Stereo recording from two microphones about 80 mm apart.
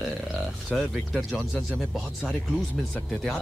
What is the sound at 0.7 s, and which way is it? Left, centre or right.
Speech, centre.